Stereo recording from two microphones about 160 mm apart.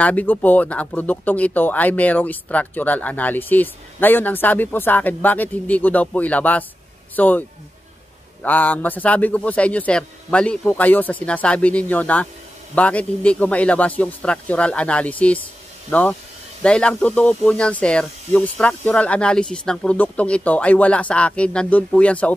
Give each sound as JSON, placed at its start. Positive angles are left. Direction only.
{"t": 0.0, "sound": "speech", "side_deg": 10}